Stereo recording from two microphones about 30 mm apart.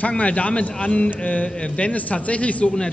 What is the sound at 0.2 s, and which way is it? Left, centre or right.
Speech, left.